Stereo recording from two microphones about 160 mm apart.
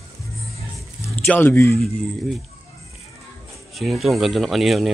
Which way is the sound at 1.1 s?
10° left (ahead or behind).